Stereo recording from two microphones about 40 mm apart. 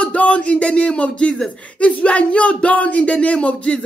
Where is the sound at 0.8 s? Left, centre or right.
Left.